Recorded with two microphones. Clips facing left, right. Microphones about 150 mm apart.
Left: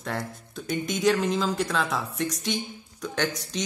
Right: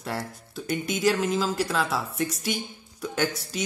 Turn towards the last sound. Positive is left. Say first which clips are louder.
# right 1 dB
turn(degrees=-5)  # may be behind; listen again after turning